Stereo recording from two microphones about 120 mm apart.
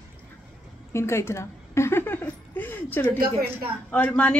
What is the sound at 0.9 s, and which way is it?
Speech, 20° left (ahead or behind).